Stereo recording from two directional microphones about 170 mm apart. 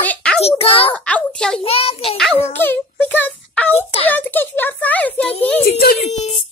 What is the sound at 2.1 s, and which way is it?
A child's voice, 5° left (ahead or behind).